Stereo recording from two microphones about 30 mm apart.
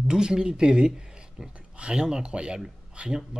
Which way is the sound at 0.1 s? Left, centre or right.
Right.